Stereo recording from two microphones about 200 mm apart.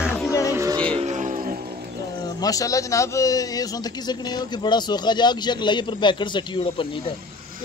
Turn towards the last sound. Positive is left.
turn(degrees=25)  # may be behind; listen again after turning